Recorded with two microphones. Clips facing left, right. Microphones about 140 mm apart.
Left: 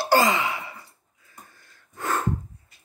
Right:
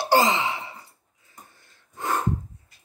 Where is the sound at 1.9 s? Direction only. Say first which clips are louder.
Even; 20° right (ahead or behind).